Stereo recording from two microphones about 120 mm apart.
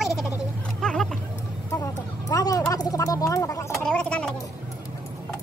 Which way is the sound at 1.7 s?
30° left (ahead or behind).